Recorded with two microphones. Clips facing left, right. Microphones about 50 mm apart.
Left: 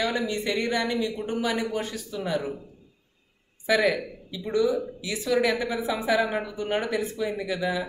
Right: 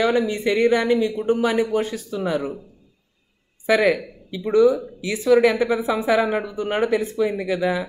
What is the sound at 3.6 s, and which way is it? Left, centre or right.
Speech, right.